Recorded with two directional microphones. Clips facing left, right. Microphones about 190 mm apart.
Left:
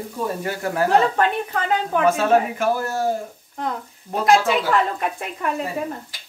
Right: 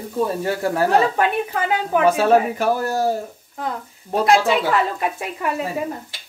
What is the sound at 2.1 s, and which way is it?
Speech, 35° right (ahead or behind).